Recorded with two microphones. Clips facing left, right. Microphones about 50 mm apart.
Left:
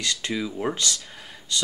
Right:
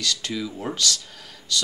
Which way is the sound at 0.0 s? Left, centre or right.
Left.